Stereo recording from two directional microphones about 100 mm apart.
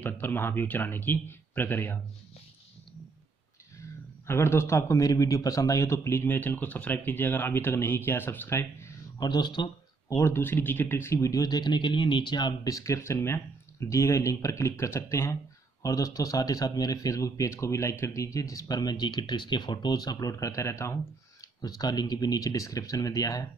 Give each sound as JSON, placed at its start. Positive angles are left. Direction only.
{"t": 0.0, "sound": "a man's voice", "side_deg": 20}
{"t": 4.3, "sound": "a man's voice", "side_deg": 25}
{"t": 9.2, "sound": "speech", "side_deg": 45}
{"t": 10.0, "sound": "speech", "side_deg": 25}
{"t": 12.6, "sound": "a man's voice", "side_deg": 35}
{"t": 21.5, "sound": "speech", "side_deg": 40}